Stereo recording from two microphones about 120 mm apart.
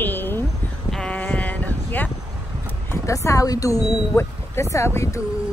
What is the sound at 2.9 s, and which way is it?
Speech, 25° left (ahead or behind).